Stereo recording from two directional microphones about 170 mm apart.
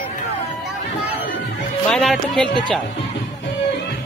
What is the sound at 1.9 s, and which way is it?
Speech, centre (ahead or behind).